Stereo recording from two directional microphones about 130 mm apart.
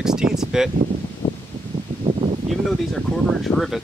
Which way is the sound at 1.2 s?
35° left (ahead or behind).